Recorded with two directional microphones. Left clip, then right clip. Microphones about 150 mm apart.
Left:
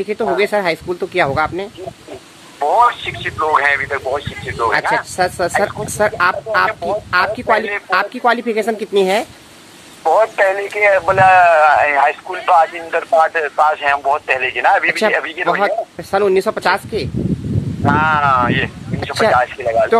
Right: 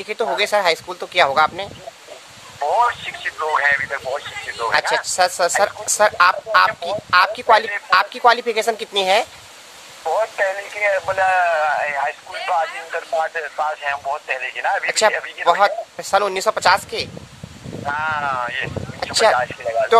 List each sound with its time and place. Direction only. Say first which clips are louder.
0.0 s speech: left 4 dB; 5° right (ahead or behind)
2.6 s speech: left 5 dB; 15° left (ahead or behind)
5.1 s speech: left 1 dB; 5° right (ahead or behind)
10.0 s speech: left 7 dB; 30° left (ahead or behind)
15.6 s speech: left 1 dB; 5° right (ahead or behind)
17.8 s speech: left 8 dB; 30° left (ahead or behind)